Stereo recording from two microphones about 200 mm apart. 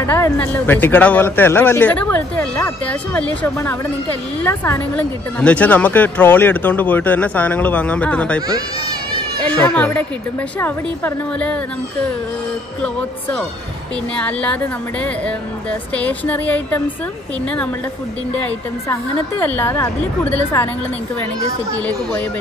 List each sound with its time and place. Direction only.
0.0 s speech: 10° left (ahead or behind)
8.4 s speech: 20° right (ahead or behind)
9.4 s speech: 5° left (ahead or behind)
14.1 s a woman's voice: 5° left (ahead or behind)
16.0 s speech: 5° left (ahead or behind)
19.4 s speech: 10° left (ahead or behind)